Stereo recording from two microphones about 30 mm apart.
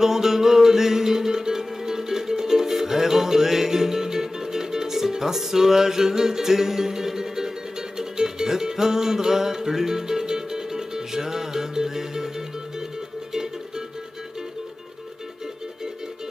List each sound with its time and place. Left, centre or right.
0.0 s music: centre